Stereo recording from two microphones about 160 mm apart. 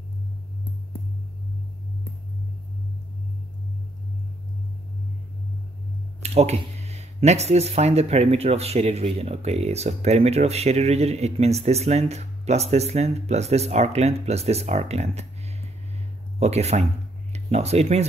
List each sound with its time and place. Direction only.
6.2 s speech: 45° right (ahead or behind)
16.3 s speech: 40° right (ahead or behind)